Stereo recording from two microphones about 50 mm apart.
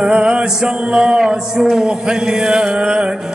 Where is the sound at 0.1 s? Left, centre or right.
Centre.